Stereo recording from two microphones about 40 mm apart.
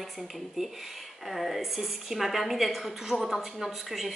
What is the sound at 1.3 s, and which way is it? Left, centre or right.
A woman's voice, centre.